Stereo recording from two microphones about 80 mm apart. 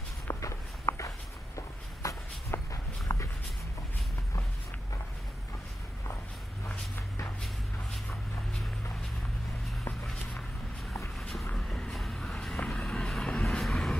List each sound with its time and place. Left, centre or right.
0.3 s walk: left
11.1 s vehicle: centre